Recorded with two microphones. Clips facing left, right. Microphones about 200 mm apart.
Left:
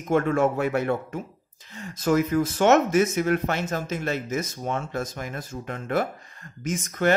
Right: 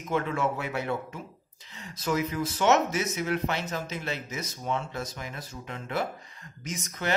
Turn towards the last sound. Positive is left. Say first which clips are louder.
# left 9 dB
turn(degrees=50)  # may be behind; listen again after turning